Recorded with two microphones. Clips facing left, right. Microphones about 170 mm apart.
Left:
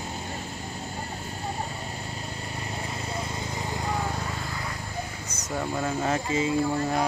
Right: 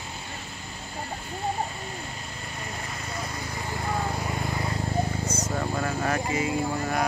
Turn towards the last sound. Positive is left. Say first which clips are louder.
# left 2 dB
turn(degrees=25)  # may be behind; listen again after turning